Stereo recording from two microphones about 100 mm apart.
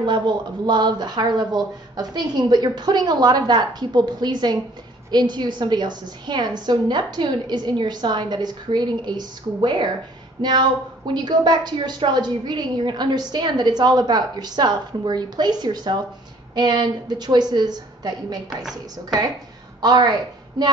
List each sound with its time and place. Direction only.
0.0 s a woman's voice: 50° right (ahead or behind)
18.6 s a woman's voice: 5° right (ahead or behind)
19.8 s a woman's voice: 45° right (ahead or behind)